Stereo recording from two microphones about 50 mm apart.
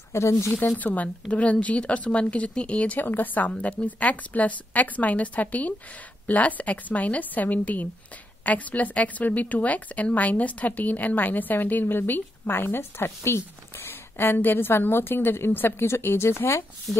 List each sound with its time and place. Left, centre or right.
0.1 s speech: left
0.7 s a woman's voice: left
3.0 s a woman's voice: left